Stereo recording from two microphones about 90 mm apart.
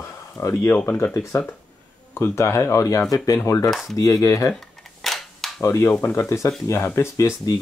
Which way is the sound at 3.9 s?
40° left (ahead or behind).